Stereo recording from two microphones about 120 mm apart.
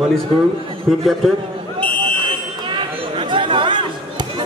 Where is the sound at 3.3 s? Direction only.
45° right (ahead or behind).